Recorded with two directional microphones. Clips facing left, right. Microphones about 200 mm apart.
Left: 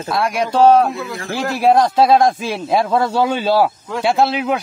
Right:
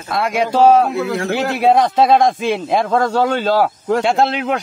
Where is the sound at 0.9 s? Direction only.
70° right (ahead or behind).